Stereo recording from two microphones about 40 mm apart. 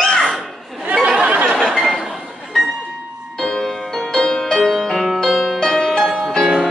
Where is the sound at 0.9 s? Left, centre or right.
Right.